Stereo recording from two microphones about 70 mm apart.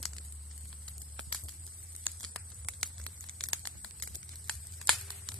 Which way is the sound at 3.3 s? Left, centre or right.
Centre.